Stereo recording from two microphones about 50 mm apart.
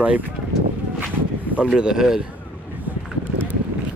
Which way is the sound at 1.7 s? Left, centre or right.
Centre.